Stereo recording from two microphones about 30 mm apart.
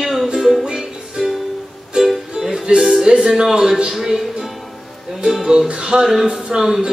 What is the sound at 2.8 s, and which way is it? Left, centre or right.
Music, centre.